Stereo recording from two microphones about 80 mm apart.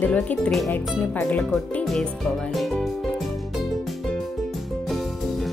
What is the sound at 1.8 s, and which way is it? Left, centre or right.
Speech, centre.